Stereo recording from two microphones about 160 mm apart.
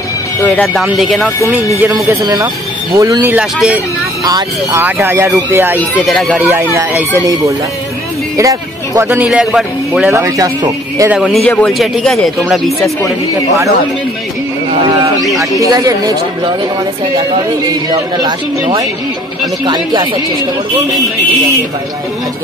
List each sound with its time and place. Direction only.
0.5 s speech: 5° left (ahead or behind)
1.8 s a man's voice: 15° right (ahead or behind)
3.3 s a man's voice: 5° right (ahead or behind)
4.2 s a man's voice: 20° right (ahead or behind)
5.8 s a man's voice: 5° left (ahead or behind); by 7.1 s 10° right (ahead or behind)
8.4 s a man's voice: 20° right (ahead or behind); by 10.1 s centre (ahead or behind)
10.1 s speech: 20° right (ahead or behind)
11.1 s speech: centre (ahead or behind)
15.6 s speech: 20° right (ahead or behind)